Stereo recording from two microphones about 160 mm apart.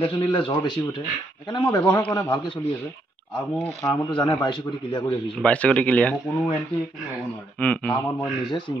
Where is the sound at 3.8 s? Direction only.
20° left (ahead or behind).